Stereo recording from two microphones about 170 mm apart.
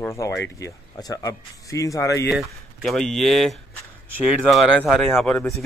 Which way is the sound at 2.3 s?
Centre (ahead or behind).